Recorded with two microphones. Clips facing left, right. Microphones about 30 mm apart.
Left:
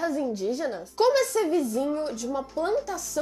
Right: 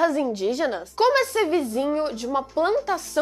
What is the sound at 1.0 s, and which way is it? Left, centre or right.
A woman's voice, right.